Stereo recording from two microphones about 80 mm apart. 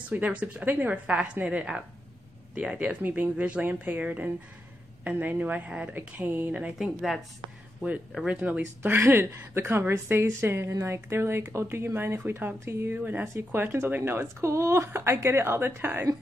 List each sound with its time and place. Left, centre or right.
0.1 s speech: centre
6.8 s a woman's voice: centre
8.3 s speech: centre